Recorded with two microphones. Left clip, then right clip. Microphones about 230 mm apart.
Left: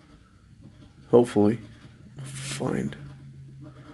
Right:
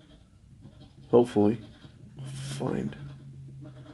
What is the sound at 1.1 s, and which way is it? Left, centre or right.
Speech, left.